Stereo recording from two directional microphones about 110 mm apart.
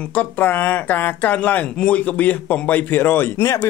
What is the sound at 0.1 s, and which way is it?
Speech, 15° left (ahead or behind).